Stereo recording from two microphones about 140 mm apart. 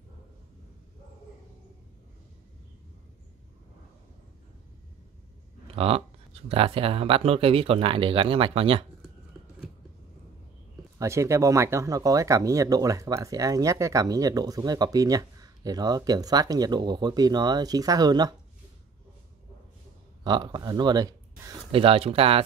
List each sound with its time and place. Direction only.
5.8 s speech: 45° right (ahead or behind)
11.0 s speech: 20° right (ahead or behind)
20.2 s speech: 30° right (ahead or behind)
21.7 s speech: 40° right (ahead or behind)